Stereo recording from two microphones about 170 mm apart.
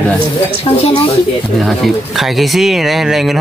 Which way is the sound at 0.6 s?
35° left (ahead or behind).